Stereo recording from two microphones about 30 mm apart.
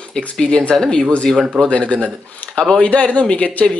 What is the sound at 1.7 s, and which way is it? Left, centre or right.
Speech, left.